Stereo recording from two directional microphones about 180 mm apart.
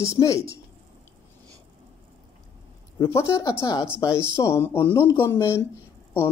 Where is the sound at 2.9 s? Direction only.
20° left (ahead or behind).